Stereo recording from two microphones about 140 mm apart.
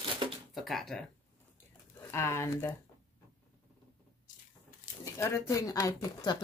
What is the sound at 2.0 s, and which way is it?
Speech, 20° left (ahead or behind).